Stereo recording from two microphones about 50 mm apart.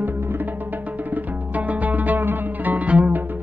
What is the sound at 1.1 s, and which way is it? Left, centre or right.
Music, right.